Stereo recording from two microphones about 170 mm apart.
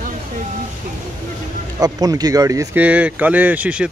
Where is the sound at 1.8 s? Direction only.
20° right (ahead or behind).